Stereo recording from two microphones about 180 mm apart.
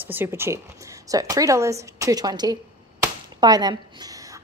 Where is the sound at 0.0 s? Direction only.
10° right (ahead or behind).